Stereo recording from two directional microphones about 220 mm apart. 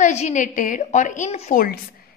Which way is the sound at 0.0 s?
30° left (ahead or behind).